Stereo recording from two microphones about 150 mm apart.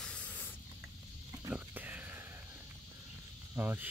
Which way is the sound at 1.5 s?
10° right (ahead or behind).